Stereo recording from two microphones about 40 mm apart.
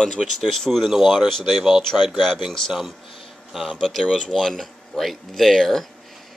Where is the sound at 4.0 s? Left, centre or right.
Left.